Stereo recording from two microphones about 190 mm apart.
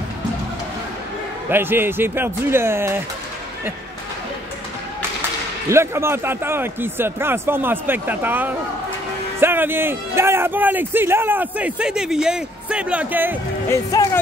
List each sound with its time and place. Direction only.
1.5 s a man's voice: 10° right (ahead or behind)
5.7 s a man's voice: 15° right (ahead or behind)
13.7 s speech: 15° left (ahead or behind)